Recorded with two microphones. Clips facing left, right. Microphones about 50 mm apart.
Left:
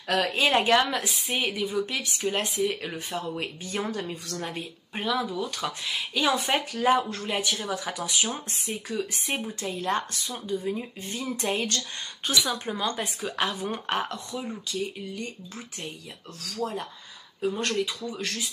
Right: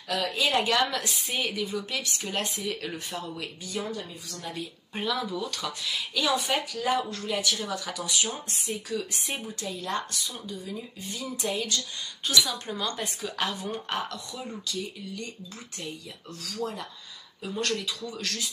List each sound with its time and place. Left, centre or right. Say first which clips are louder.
0.1 s speech: left 3 dB; left
1.7 s a woman's voice: left 3 dB; centre
3.3 s speech: left 3 dB; left
3.9 s speech: left 4 dB; left
4.9 s a woman's voice: left 2 dB; centre
5.6 s speech: left 2 dB; left
12.3 s a woman's voice: even; left
13.6 s speech: left 3 dB; left
17.4 s speech: left 4 dB; left